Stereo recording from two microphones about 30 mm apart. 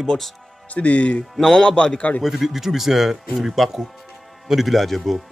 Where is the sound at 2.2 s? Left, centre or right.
Centre.